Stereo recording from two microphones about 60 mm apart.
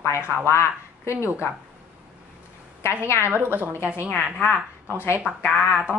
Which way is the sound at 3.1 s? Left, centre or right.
Right.